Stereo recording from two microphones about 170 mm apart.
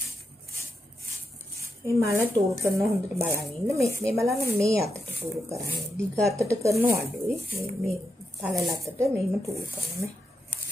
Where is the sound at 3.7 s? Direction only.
15° right (ahead or behind).